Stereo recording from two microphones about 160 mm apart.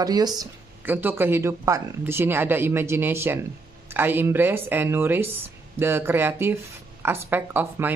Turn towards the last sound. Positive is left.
turn(degrees=-10)  # may be behind; listen again after turning